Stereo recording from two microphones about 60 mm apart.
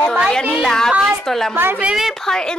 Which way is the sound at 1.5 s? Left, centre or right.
Right.